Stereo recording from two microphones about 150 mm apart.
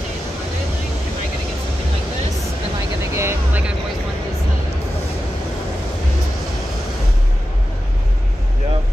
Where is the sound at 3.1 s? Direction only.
15° right (ahead or behind).